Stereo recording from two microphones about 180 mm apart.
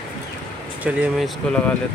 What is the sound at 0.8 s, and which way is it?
Speech, 10° right (ahead or behind).